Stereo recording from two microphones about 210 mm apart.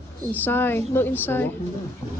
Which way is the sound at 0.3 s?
10° left (ahead or behind).